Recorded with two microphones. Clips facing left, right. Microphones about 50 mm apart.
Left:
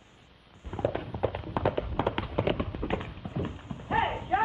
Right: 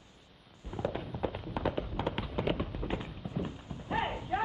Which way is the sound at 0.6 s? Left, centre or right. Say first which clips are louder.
Left 5 dB; left.